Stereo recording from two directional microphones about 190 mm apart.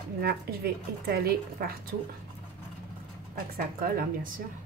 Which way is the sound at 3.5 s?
50° right (ahead or behind).